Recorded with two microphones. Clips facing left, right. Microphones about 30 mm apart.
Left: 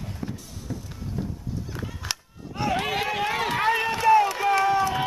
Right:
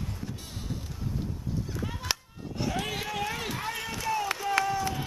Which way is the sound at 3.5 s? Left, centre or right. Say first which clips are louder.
Left 11 dB; left.